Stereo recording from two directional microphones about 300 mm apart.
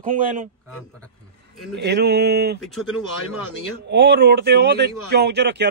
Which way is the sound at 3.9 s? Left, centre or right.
Right.